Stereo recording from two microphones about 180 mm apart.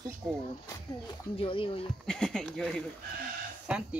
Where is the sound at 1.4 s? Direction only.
30° left (ahead or behind).